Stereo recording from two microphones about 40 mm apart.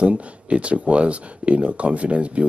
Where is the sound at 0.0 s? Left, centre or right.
Right.